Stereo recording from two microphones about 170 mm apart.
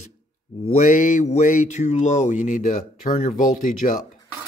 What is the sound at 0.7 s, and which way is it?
Speech, 50° left (ahead or behind).